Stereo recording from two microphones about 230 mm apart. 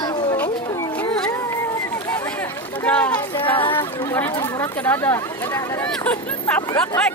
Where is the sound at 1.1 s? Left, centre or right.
Centre.